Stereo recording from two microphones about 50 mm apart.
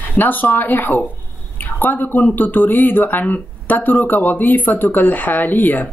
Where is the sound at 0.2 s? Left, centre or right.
Left.